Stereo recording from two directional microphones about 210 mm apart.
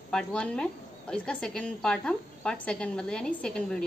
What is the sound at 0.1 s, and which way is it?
A woman's voice, 5° left (ahead or behind).